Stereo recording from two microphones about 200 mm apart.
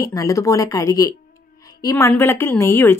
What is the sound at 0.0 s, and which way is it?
Speech, 15° left (ahead or behind).